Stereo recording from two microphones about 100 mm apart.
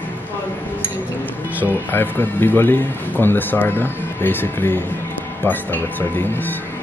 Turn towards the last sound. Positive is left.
turn(degrees=20)  # may be behind; listen again after turning